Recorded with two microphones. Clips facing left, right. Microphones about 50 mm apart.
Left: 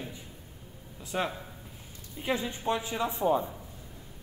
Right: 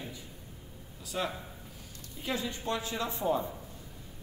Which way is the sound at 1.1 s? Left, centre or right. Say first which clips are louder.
Left 3 dB; left.